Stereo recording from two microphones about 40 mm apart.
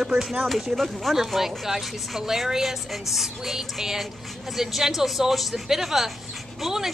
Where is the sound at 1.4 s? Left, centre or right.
Centre.